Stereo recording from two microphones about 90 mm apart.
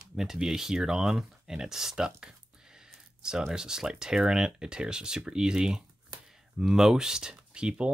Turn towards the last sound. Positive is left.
turn(degrees=-10)  # may be behind; listen again after turning